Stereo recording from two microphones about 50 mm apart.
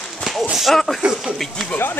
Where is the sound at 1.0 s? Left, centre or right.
Centre.